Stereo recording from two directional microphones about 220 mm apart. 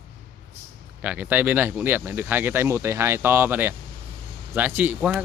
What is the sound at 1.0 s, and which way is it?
Speech, 5° right (ahead or behind).